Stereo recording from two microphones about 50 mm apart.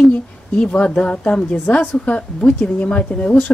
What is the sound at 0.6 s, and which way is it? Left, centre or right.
Speech, centre.